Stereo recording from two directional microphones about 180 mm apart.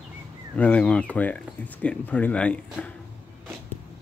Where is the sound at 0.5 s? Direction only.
5° left (ahead or behind).